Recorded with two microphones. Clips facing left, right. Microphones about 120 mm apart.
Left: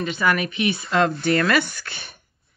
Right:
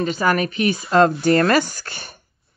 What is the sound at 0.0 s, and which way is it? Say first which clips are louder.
Speech: right 3 dB; 40° right (ahead or behind).